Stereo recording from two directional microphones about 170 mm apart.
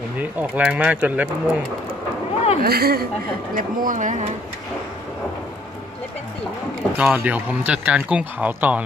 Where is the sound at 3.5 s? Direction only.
50° right (ahead or behind).